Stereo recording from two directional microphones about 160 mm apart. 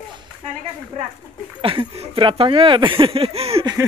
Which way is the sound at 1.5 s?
35° right (ahead or behind).